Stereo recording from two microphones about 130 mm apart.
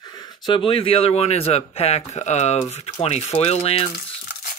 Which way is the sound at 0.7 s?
45° left (ahead or behind).